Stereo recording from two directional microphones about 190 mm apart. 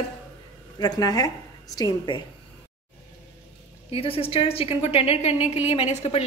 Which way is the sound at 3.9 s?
30° left (ahead or behind).